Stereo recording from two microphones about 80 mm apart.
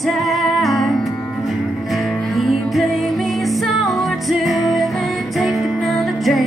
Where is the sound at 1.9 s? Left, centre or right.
Centre.